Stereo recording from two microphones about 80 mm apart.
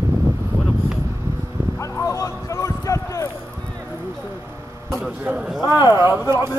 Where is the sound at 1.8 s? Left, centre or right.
Left.